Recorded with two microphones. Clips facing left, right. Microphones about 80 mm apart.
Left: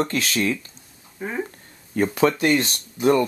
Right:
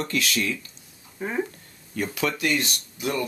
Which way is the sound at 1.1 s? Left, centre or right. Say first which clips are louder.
Right 1 dB; centre.